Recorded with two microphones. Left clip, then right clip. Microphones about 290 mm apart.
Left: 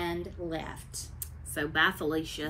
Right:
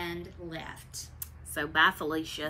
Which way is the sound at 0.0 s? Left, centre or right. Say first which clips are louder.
Left 4 dB; centre.